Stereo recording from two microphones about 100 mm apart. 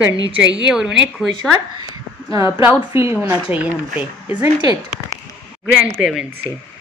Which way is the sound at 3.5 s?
15° right (ahead or behind).